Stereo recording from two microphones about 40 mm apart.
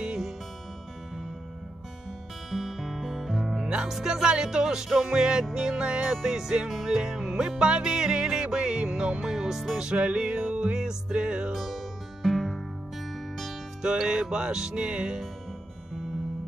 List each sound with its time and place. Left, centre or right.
0.0 s music: centre
2.5 s music: centre
3.6 s music: centre
6.7 s music: centre
9.8 s music: right
11.5 s music: centre
13.8 s music: centre